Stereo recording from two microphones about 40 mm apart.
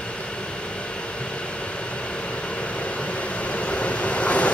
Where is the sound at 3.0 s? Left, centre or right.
Left.